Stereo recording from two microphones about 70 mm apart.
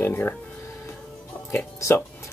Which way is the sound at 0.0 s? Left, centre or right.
Left.